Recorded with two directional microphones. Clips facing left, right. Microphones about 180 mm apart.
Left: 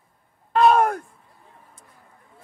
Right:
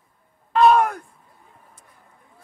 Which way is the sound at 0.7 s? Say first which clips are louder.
Even; 40° left (ahead or behind).